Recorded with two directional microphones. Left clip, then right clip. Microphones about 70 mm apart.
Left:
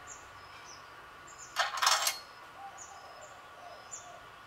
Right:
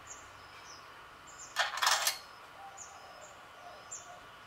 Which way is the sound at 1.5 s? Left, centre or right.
Centre.